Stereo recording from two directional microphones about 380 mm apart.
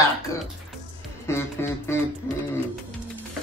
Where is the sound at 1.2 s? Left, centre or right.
Centre.